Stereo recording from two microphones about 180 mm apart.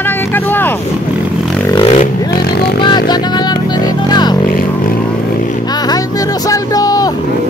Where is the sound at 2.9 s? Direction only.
25° left (ahead or behind).